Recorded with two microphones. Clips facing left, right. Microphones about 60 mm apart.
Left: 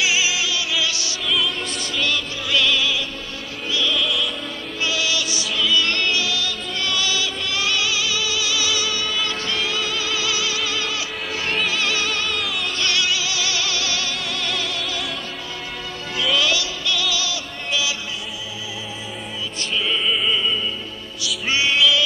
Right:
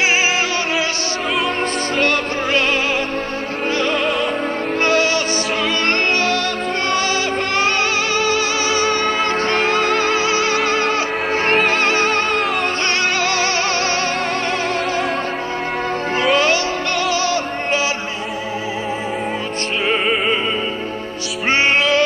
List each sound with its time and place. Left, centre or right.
0.0 s music: right
2.0 s music: right
16.2 s music: right
19.9 s music: right
21.5 s music: right